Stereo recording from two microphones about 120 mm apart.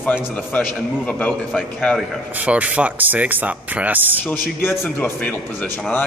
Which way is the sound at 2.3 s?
10° right (ahead or behind).